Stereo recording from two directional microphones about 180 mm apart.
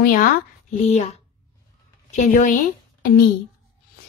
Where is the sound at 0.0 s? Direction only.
50° left (ahead or behind).